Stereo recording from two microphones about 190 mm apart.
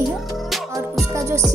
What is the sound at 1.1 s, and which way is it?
Music, 15° right (ahead or behind).